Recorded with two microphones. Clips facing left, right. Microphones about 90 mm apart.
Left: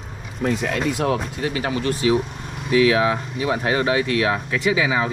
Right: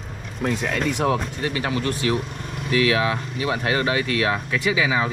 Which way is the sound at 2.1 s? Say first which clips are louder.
Left 4 dB; centre (ahead or behind).